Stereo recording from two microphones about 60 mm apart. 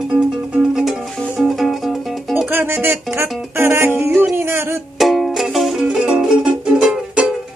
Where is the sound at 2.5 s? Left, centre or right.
Right.